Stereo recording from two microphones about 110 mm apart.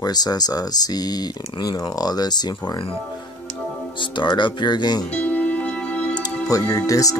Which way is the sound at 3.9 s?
45° left (ahead or behind).